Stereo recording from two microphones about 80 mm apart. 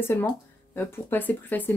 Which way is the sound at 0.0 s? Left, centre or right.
Left.